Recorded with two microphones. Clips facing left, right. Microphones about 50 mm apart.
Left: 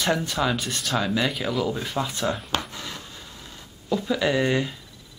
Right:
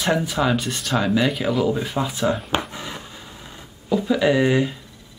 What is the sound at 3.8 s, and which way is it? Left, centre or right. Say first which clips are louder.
Speech: right 5 dB; centre.